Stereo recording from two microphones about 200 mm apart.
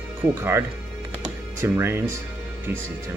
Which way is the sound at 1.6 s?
10° right (ahead or behind).